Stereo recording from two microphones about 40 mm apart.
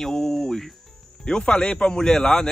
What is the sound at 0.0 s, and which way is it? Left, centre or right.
Cricket, centre.